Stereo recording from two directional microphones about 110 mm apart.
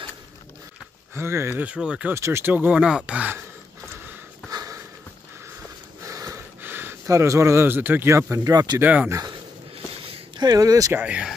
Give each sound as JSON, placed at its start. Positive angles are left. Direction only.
{"t": 1.1, "sound": "speech", "side_deg": -25}
{"t": 2.1, "sound": "speech", "side_deg": -25}
{"t": 4.5, "sound": "a sound", "side_deg": -30}
{"t": 6.0, "sound": "snort", "side_deg": -30}
{"t": 6.6, "sound": "a sound", "side_deg": -20}
{"t": 7.1, "sound": "speech", "side_deg": -25}
{"t": 8.7, "sound": "speech", "side_deg": -15}
{"t": 9.1, "sound": "speech", "side_deg": -35}
{"t": 10.9, "sound": "speech", "side_deg": -15}